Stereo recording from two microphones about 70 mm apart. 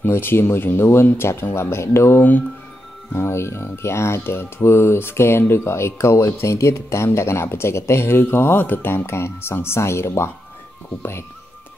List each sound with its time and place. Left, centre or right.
0.0 s speech: left